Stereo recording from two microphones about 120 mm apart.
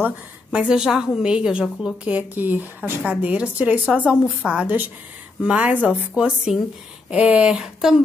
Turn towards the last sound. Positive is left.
turn(degrees=-5)  # may be behind; listen again after turning